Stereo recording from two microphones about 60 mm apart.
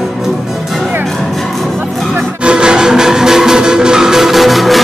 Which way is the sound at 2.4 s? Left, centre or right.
Centre.